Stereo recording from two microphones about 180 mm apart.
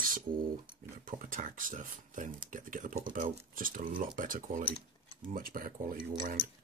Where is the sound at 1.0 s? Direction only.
50° right (ahead or behind).